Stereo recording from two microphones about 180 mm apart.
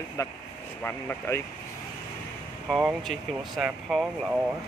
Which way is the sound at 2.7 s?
Centre (ahead or behind).